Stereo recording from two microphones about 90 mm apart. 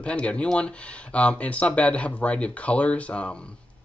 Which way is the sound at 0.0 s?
10° left (ahead or behind).